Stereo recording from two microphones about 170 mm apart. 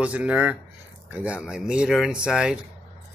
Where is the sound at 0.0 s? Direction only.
5° right (ahead or behind).